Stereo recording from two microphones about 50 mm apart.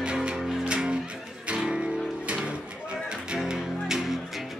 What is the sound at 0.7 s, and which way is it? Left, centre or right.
Music, right.